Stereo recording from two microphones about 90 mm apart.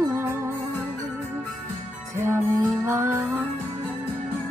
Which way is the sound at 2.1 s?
30° right (ahead or behind).